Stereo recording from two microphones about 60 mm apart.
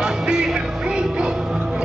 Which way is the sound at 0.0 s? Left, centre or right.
Centre.